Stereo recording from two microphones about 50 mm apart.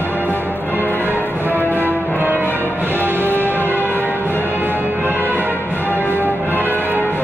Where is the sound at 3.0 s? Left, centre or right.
Right.